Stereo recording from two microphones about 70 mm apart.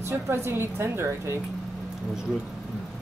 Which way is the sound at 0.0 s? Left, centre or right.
Right.